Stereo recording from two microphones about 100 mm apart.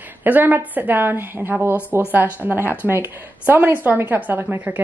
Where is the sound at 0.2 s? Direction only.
20° right (ahead or behind).